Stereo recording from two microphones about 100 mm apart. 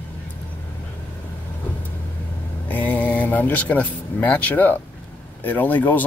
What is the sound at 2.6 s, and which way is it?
Speech, 15° left (ahead or behind).